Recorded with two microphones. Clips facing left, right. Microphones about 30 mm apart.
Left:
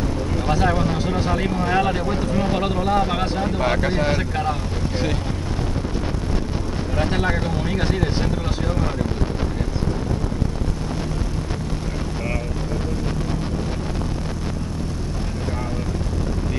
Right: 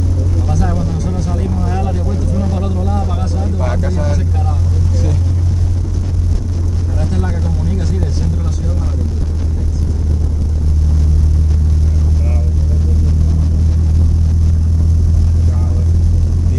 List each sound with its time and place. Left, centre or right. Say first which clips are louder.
0.5 s vehicle: left 2 dB; left
7.0 s vehicle: left 1 dB; left